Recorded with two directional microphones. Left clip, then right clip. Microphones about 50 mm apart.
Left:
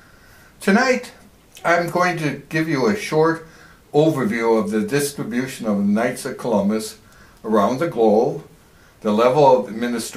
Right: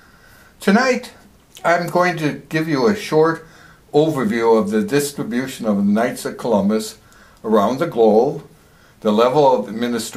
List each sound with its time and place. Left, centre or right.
0.6 s a man's voice: right